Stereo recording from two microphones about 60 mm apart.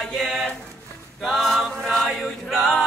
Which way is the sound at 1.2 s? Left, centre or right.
Centre.